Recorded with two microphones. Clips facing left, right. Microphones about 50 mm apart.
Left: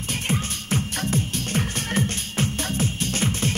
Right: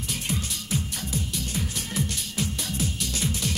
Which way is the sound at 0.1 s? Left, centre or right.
Left.